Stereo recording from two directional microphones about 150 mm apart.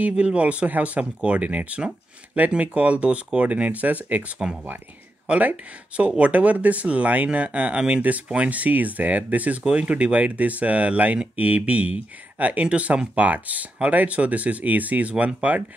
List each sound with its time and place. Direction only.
0.0 s speech: 10° right (ahead or behind)